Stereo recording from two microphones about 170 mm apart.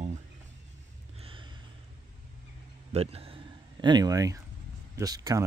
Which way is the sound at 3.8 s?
25° right (ahead or behind).